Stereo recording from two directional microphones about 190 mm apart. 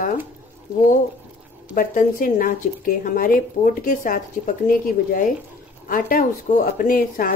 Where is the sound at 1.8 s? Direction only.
45° left (ahead or behind).